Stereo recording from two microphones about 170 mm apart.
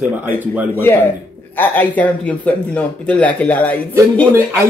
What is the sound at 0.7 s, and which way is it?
Speech, 10° left (ahead or behind).